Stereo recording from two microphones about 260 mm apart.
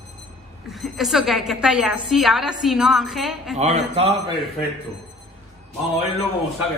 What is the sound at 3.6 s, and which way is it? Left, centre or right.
Speech, right.